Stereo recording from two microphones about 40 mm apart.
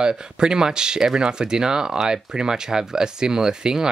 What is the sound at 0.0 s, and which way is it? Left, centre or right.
Speech, centre.